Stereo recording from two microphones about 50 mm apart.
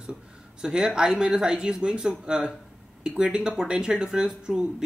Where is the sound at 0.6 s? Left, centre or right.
Centre.